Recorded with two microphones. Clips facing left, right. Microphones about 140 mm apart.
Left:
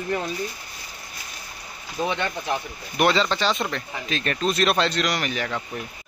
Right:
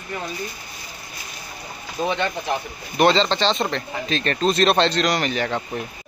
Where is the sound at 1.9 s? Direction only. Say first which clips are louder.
Right 2 dB; 20° right (ahead or behind).